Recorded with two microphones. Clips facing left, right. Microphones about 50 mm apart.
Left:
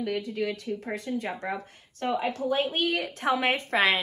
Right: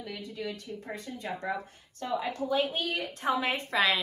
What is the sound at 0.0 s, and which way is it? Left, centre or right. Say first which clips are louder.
A woman's voice: left 8 dB; left.